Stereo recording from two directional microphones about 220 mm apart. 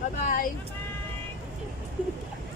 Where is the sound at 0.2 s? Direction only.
35° left (ahead or behind).